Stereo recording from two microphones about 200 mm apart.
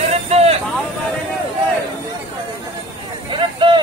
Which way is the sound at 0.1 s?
30° right (ahead or behind).